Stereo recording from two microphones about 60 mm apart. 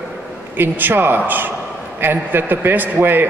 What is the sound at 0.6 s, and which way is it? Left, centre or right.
A man's voice, right.